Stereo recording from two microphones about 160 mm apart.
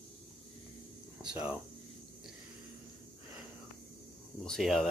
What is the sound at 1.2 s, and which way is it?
Speech, 5° right (ahead or behind).